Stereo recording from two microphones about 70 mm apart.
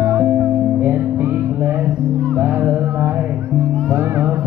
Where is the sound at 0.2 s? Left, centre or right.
Right.